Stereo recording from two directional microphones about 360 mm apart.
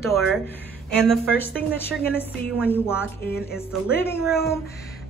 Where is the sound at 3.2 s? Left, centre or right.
Left.